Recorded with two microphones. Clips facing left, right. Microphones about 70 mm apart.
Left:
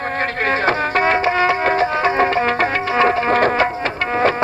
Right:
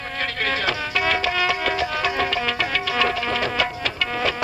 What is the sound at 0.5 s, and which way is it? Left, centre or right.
Music, left.